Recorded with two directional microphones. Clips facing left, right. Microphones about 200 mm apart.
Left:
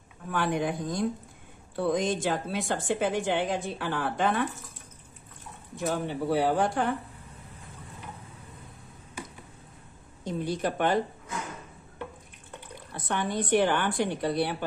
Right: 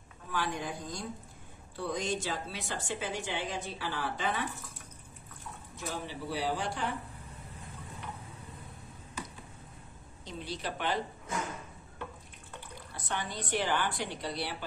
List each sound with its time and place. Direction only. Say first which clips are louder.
0.3 s a woman's voice: left 7 dB; 60° left (ahead or behind)
5.8 s a woman's voice: left 10 dB; 55° left (ahead or behind)
10.2 s a woman's voice: left 9 dB; 50° left (ahead or behind)
12.9 s a woman's voice: left 8 dB; 55° left (ahead or behind)